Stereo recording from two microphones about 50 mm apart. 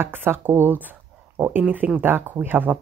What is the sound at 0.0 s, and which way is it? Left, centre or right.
Speech, right.